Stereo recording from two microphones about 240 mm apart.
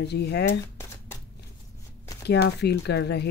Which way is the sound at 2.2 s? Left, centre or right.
Left.